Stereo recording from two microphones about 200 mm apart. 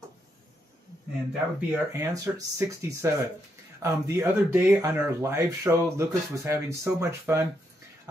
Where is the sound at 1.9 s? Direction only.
15° right (ahead or behind).